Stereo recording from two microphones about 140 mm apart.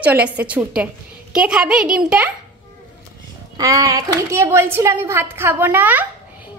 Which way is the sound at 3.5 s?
25° right (ahead or behind).